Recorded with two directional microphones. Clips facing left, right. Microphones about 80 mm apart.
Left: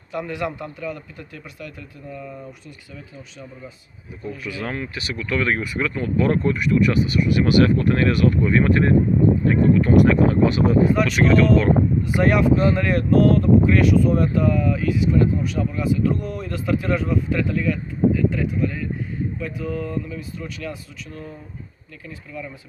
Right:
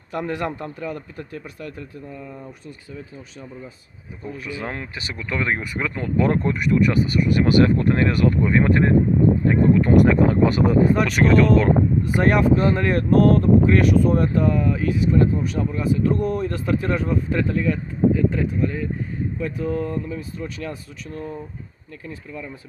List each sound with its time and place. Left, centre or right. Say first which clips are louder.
0.1 s speech: right 1 dB; right
4.3 s speech: left 1 dB; right